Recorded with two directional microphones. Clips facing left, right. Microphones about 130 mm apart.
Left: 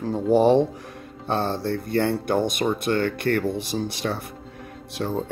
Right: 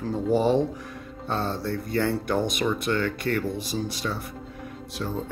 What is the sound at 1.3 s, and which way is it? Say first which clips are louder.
Music: left 4 dB; 30° left (ahead or behind).